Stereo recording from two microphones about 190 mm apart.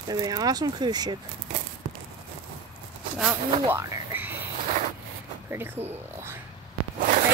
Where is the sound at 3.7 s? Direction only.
10° right (ahead or behind).